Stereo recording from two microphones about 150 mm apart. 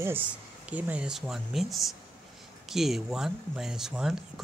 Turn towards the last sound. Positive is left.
turn(degrees=-5)  # may be behind; listen again after turning